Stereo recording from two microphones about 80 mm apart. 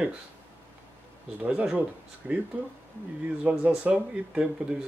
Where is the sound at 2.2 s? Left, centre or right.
Centre.